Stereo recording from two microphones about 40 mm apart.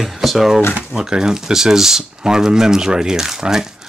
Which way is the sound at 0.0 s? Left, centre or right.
Centre.